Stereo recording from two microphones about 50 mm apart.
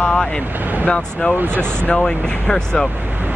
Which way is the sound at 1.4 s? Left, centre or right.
Right.